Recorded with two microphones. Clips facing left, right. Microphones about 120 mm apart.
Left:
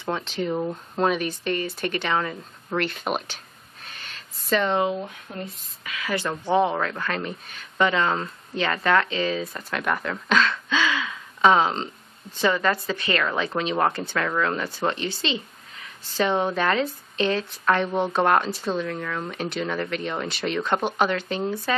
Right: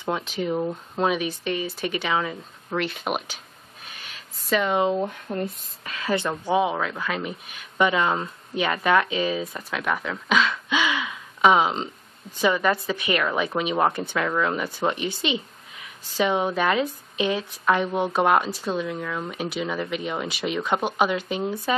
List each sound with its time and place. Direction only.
0.1 s speech: 5° right (ahead or behind)
4.0 s a sound: 5° right (ahead or behind)
5.3 s speech: 45° right (ahead or behind)
5.9 s a woman's voice: 30° right (ahead or behind)
6.2 s a woman's voice: 10° right (ahead or behind)